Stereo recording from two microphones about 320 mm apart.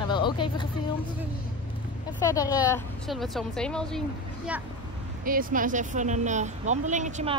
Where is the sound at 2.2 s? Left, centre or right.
Centre.